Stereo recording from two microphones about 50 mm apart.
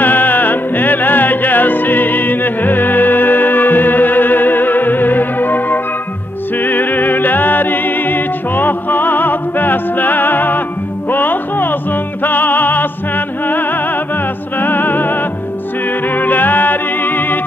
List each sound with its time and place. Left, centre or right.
0.0 s music: left
14.6 s music: left
16.2 s music: left